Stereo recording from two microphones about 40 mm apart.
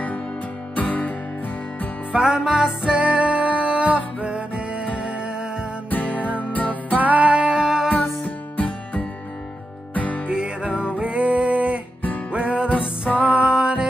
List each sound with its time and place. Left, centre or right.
0.7 s music: left
2.1 s music: centre
5.9 s music: left
7.0 s music: right; by 7.9 s centre
8.0 s music: centre
8.5 s music: left
10.2 s music: right